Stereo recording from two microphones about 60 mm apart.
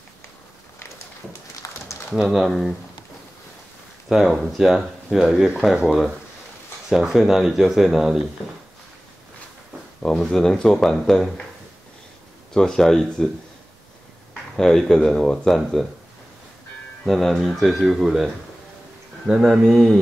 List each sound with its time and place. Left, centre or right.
1.6 s a sound: left
2.1 s speech: centre
4.1 s speech: centre
10.0 s speech: centre
12.5 s speech: centre
14.6 s speech: centre
17.0 s speech: centre
19.4 s speech: centre